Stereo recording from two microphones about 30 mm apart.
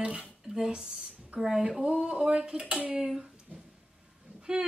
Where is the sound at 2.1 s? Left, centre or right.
Right.